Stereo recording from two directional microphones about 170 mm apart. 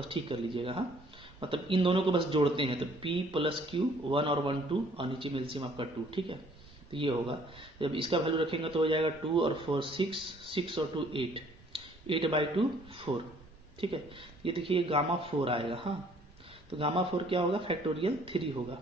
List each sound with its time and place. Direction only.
0.1 s a man's voice: 30° right (ahead or behind)